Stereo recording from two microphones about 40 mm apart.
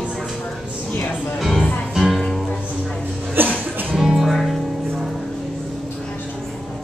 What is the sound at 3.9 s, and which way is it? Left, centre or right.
Music, centre.